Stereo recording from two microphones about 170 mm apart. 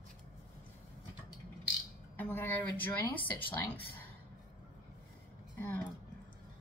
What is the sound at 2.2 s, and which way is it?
A woman's voice, 10° left (ahead or behind).